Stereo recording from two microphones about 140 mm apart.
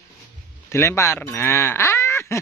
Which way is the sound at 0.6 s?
20° left (ahead or behind).